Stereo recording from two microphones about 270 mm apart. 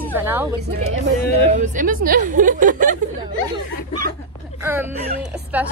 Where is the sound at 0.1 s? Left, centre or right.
Centre.